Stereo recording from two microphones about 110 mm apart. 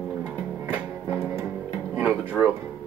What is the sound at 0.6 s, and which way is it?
Music, 20° right (ahead or behind).